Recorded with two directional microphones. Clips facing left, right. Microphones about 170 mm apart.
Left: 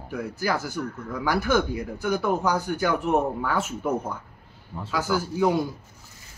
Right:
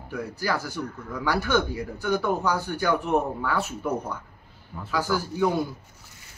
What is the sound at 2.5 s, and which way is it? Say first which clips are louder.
A man's voice: left 1 dB; 15° left (ahead or behind).